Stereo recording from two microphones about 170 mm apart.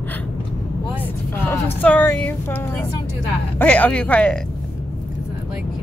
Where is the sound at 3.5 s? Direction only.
10° left (ahead or behind).